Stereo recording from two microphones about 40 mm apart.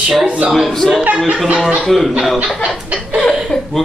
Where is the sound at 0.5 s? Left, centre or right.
Centre.